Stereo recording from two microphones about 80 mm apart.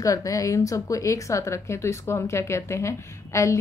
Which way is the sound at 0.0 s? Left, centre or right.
Left.